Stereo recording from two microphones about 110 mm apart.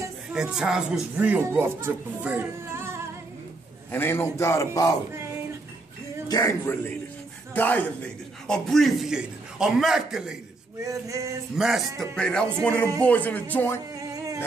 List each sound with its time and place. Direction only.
0.3 s speech: 5° right (ahead or behind); by 3.0 s 20° right (ahead or behind)
3.9 s a man's voice: 20° left (ahead or behind)
6.2 s a man's voice: 30° left (ahead or behind); by 7.8 s 15° left (ahead or behind)
8.5 s a man's voice: 5° left (ahead or behind)
10.8 s male singing: 30° right (ahead or behind)
11.5 s a man's voice: 5° right (ahead or behind)
12.2 s speech: 5° left (ahead or behind)
13.9 s a sound: 35° right (ahead or behind)